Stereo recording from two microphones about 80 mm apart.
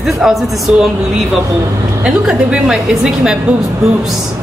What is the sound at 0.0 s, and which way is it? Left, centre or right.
Speech, centre.